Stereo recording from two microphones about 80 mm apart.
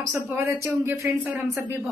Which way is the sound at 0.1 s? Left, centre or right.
Right.